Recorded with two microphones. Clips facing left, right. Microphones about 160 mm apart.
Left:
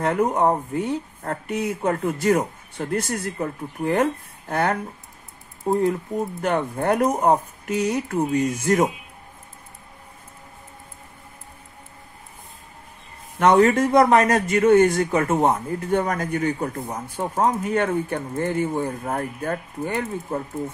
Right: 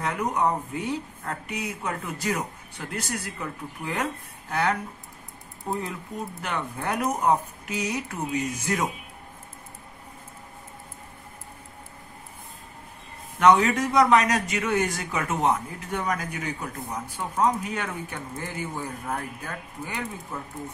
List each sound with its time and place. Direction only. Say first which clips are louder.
0.0 s speech: left 6 dB; 50° left (ahead or behind)
13.4 s a man's voice: left 3 dB; 55° left (ahead or behind)